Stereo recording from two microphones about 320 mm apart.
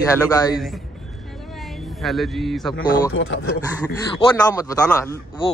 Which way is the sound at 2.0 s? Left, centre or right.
Centre.